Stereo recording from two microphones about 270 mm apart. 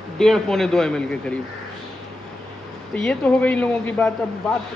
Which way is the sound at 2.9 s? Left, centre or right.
Centre.